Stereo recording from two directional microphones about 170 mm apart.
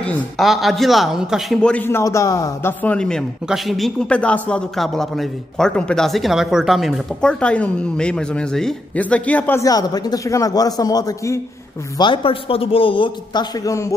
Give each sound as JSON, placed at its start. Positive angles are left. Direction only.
{"t": 0.0, "sound": "speech", "side_deg": 5}
{"t": 12.0, "sound": "a man's voice", "side_deg": 30}